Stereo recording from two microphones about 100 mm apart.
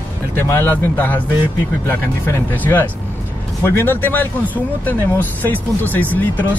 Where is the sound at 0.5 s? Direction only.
20° left (ahead or behind).